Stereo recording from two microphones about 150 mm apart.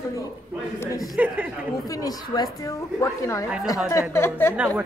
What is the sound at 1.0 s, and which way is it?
Speech, 5° right (ahead or behind).